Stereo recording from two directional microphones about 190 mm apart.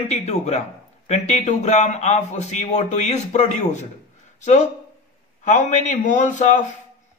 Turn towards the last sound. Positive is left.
turn(degrees=40)  # may be behind; listen again after turning